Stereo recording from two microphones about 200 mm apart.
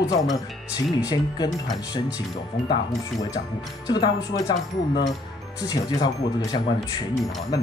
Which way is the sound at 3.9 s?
20° left (ahead or behind).